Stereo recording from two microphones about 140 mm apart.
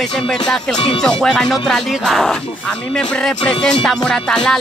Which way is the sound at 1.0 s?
5° left (ahead or behind).